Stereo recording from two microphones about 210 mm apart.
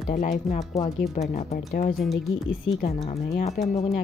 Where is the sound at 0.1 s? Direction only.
35° left (ahead or behind).